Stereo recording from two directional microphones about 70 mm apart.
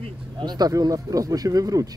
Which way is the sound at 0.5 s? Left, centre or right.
Right.